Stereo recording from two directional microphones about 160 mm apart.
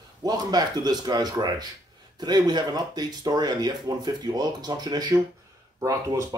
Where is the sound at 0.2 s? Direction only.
25° right (ahead or behind).